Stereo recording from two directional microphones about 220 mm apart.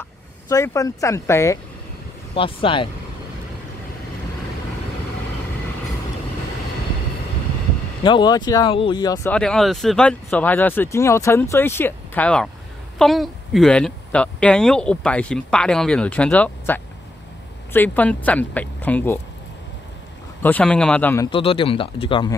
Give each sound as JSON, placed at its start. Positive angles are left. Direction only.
{"t": 0.5, "sound": "speech", "side_deg": 15}
{"t": 2.3, "sound": "speech", "side_deg": 25}
{"t": 8.0, "sound": "speech", "side_deg": 20}
{"t": 9.3, "sound": "speech", "side_deg": 5}
{"t": 20.4, "sound": "speech", "side_deg": 5}
{"t": 21.3, "sound": "speech", "side_deg": 25}